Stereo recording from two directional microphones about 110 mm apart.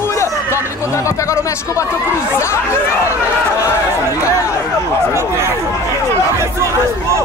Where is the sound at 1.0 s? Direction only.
25° left (ahead or behind).